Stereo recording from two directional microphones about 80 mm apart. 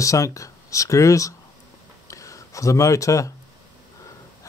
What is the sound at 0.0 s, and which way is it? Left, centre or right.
Speech, left.